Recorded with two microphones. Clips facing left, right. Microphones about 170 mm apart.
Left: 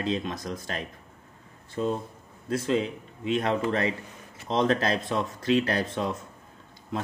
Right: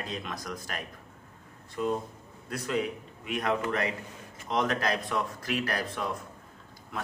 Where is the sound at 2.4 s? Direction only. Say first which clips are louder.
Left 5 dB; 25° left (ahead or behind).